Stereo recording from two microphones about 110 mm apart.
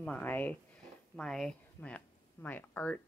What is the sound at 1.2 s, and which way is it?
Speech, 5° left (ahead or behind).